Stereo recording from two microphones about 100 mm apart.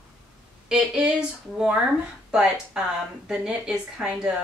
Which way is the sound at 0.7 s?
10° right (ahead or behind).